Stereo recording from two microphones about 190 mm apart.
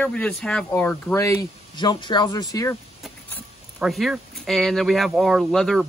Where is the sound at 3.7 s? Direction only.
Centre (ahead or behind).